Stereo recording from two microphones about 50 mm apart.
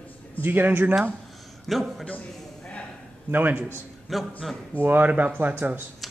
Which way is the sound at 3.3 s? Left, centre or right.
Right.